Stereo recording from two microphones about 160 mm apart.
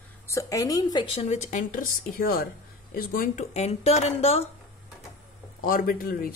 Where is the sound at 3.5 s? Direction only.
40° left (ahead or behind).